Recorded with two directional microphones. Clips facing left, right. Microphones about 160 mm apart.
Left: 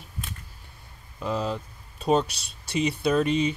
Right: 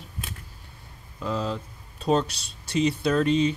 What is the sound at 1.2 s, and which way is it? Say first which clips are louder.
Speech: even; 15° left (ahead or behind).